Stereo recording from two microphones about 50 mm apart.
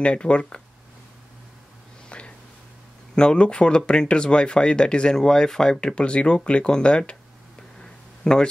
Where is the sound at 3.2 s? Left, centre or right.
Centre.